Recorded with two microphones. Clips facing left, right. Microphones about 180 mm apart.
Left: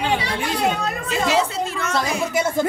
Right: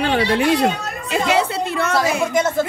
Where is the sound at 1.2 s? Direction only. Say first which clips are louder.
Right 1 dB; 60° right (ahead or behind).